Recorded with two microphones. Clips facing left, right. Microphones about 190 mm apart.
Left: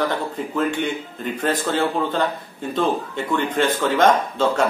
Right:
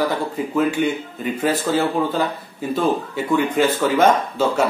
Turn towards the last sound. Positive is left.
turn(degrees=-10)  # may be behind; listen again after turning